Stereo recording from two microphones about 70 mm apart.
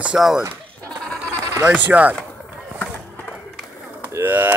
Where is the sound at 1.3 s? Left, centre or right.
Right.